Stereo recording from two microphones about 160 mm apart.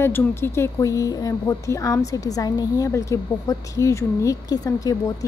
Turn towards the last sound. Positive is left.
turn(degrees=20)  # may be behind; listen again after turning